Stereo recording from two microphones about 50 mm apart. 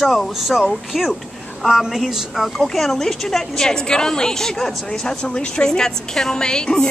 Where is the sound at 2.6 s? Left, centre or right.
Centre.